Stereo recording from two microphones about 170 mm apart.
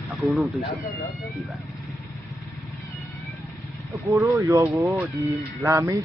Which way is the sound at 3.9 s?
20° right (ahead or behind).